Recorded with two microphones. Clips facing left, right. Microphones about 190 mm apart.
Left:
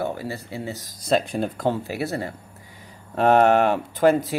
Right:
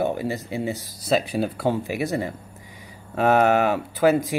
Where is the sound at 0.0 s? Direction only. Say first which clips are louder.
Right 4 dB; 20° right (ahead or behind).